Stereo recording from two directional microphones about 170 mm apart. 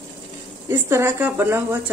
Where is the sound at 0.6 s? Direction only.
15° right (ahead or behind).